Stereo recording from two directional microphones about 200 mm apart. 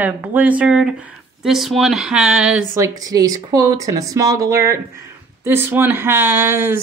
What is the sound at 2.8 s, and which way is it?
Speech, 20° right (ahead or behind).